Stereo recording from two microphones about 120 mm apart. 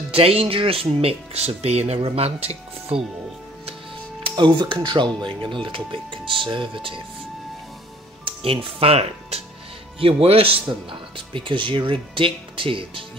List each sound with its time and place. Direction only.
0.1 s speech: 50° right (ahead or behind)
4.2 s speech: 40° right (ahead or behind)
8.5 s speech: 55° right (ahead or behind)